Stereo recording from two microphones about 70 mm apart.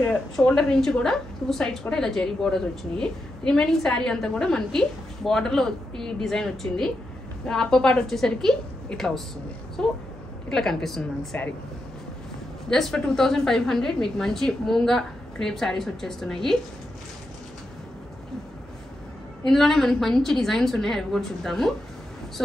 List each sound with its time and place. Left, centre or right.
0.1 s a woman's voice: centre
11.3 s speech: left
12.6 s a woman's voice: centre
19.4 s a woman's voice: centre